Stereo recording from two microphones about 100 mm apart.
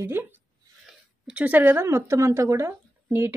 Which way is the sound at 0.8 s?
10° right (ahead or behind).